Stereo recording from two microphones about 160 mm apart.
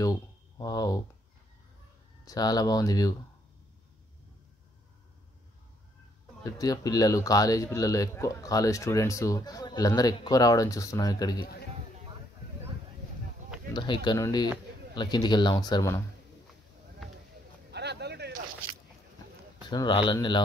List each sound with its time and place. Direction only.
0.0 s a sound: 20° left (ahead or behind)
2.2 s speech: 25° left (ahead or behind)
6.4 s speech: 25° left (ahead or behind)
13.7 s speech: 25° left (ahead or behind)
17.6 s a sound: 90° right
19.7 s speech: 30° left (ahead or behind)